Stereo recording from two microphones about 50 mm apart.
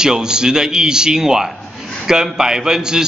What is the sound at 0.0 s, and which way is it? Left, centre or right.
A man's voice, centre.